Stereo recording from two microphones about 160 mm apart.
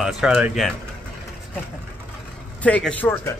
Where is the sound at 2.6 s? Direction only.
10° left (ahead or behind).